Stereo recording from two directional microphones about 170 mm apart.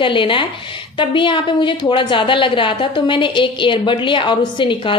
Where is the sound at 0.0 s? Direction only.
30° left (ahead or behind).